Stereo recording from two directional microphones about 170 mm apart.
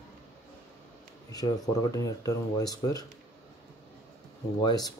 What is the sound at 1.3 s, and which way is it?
Speech, 25° left (ahead or behind).